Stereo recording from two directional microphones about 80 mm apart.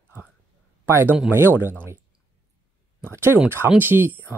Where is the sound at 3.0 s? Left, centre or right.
Right.